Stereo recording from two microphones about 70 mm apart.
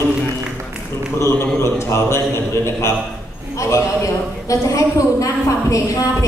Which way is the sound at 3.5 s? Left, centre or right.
Left.